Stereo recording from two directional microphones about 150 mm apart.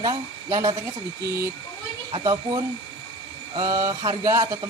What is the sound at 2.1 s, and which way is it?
Speech, 25° right (ahead or behind).